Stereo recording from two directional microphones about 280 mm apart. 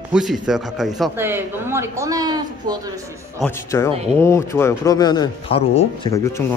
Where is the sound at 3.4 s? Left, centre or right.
Centre.